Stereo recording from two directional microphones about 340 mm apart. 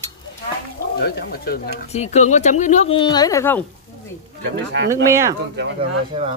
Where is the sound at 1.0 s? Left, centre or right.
Left; by 3.7 s centre.